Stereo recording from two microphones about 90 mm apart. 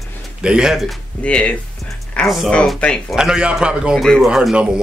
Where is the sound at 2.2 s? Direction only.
Centre (ahead or behind).